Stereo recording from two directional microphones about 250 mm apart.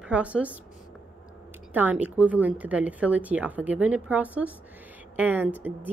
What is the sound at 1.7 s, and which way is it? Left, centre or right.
A woman's voice, centre.